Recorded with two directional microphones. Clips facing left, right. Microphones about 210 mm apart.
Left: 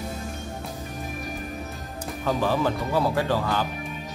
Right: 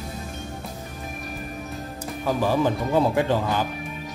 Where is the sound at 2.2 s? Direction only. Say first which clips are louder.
Right 2 dB; 15° right (ahead or behind).